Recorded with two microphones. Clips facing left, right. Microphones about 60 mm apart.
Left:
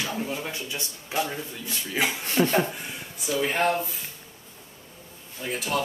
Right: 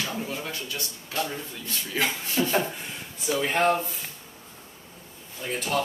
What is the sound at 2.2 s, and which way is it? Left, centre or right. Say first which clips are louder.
Speech: left 3 dB; left.